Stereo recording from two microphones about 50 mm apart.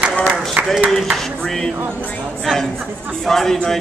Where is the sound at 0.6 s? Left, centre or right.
Right.